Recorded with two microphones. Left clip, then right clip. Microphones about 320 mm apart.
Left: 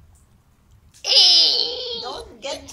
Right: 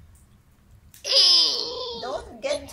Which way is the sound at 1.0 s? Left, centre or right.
Centre.